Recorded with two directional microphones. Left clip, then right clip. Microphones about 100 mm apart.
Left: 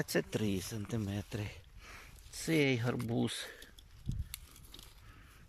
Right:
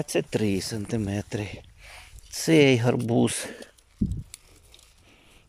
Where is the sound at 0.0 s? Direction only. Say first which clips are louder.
Right 8 dB; 25° right (ahead or behind).